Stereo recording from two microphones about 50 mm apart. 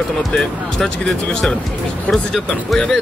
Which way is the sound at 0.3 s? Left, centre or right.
Centre.